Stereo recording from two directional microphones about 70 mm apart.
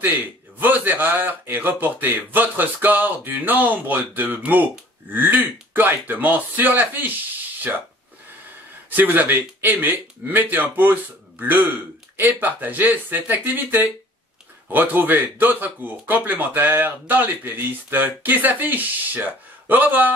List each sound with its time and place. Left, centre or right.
0.6 s speech: right
8.9 s speech: right